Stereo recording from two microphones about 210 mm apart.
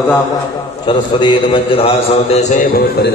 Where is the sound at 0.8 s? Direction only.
25° left (ahead or behind).